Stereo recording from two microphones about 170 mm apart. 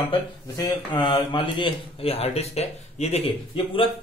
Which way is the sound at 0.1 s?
30° left (ahead or behind).